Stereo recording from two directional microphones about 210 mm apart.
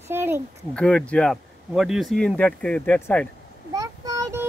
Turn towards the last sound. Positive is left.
turn(degrees=-15)  # may be behind; listen again after turning